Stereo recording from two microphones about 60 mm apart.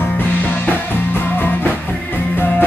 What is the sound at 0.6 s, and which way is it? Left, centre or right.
Music, left.